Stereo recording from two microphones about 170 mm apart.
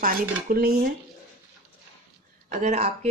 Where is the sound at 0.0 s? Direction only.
60° right (ahead or behind).